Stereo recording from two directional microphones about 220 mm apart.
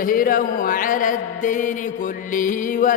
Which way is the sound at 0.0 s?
40° left (ahead or behind).